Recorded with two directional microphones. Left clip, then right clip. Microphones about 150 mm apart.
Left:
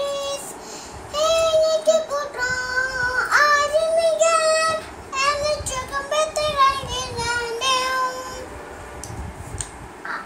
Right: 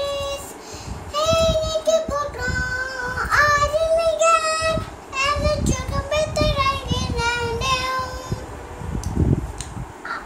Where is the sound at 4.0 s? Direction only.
10° right (ahead or behind).